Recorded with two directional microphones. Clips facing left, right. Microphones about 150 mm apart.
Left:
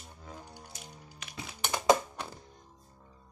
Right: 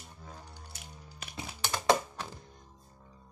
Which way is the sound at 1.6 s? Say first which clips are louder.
Left 2 dB; 15° left (ahead or behind).